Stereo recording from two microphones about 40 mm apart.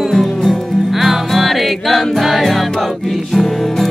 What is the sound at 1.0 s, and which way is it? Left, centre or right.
Music, centre.